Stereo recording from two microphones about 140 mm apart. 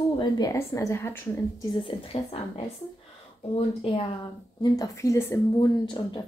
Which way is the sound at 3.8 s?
45° left (ahead or behind).